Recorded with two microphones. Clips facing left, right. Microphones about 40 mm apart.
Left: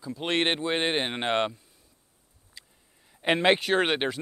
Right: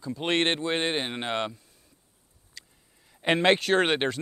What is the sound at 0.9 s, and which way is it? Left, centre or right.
Speech, left.